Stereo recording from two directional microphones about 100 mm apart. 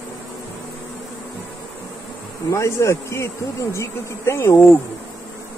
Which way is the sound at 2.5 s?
30° left (ahead or behind).